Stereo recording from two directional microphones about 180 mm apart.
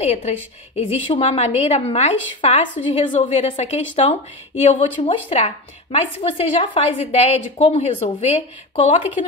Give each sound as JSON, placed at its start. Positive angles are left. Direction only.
{"t": 0.0, "sound": "speech", "side_deg": 35}